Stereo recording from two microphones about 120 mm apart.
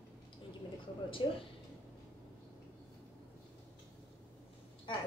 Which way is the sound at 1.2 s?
40° left (ahead or behind).